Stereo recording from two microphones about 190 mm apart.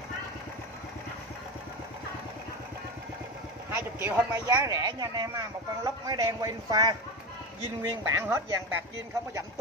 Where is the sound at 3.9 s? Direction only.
15° right (ahead or behind).